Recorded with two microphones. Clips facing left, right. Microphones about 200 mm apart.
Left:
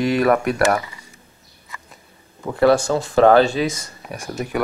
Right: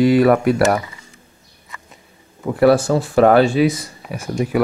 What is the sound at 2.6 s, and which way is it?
Speech, 5° right (ahead or behind).